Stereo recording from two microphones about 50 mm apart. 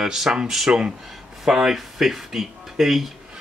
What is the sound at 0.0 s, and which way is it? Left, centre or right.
Speech, centre.